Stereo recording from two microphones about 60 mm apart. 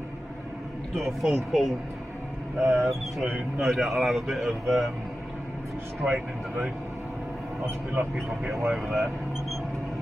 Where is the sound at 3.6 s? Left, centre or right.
Centre.